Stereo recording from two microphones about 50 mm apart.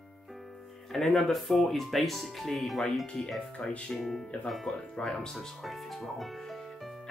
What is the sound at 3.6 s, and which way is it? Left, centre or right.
Speech, left.